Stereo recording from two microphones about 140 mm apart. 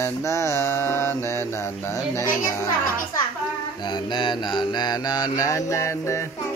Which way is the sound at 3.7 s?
30° left (ahead or behind).